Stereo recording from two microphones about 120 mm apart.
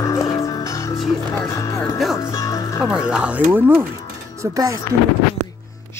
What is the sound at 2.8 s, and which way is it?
Speech, 5° right (ahead or behind).